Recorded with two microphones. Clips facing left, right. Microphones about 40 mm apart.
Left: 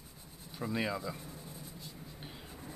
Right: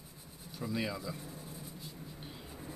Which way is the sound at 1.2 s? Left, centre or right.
Centre.